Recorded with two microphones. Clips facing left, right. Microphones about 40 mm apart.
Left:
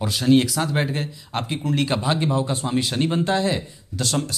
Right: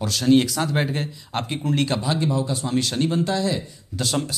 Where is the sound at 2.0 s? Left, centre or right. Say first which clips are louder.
Left 1 dB; left.